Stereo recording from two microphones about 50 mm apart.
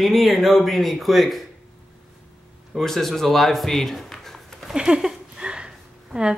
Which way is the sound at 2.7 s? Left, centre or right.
Centre.